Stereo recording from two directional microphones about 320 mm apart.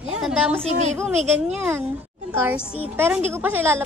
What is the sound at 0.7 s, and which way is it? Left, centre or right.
Speech, right.